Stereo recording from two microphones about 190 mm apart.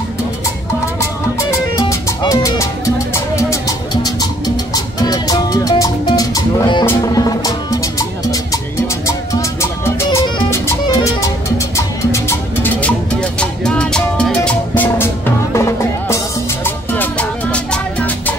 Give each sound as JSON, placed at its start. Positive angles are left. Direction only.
{"t": 1.8, "sound": "music", "side_deg": 15}
{"t": 15.5, "sound": "music", "side_deg": 15}